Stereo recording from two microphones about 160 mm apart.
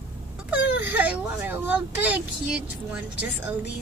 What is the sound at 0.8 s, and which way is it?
Speech, 10° right (ahead or behind).